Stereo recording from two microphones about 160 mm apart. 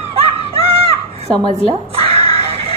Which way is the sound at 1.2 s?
30° right (ahead or behind).